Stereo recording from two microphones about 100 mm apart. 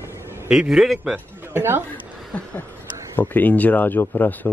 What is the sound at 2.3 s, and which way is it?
Speech, 15° left (ahead or behind).